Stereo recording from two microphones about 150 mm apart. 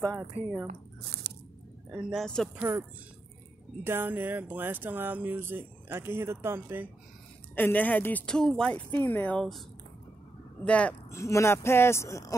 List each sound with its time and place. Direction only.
0.7 s squish: 90° right
1.9 s speech: 5° right (ahead or behind)
2.2 s speech: 5° left (ahead or behind)
2.5 s speech: 15° right (ahead or behind)
3.8 s speech: 15° right (ahead or behind)
7.5 s speech: 10° left (ahead or behind)
10.6 s speech: 10° left (ahead or behind)
11.1 s speech: 20° left (ahead or behind)